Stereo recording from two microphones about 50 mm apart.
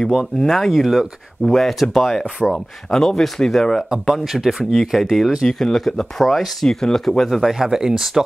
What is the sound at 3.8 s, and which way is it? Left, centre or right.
Speech, centre.